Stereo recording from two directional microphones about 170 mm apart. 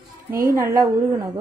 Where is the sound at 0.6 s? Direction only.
15° right (ahead or behind).